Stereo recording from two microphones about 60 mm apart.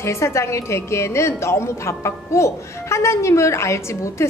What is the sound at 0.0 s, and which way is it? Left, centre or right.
A woman's voice, left.